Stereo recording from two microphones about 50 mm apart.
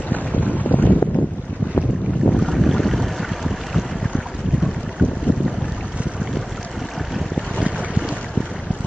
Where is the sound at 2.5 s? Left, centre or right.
Centre.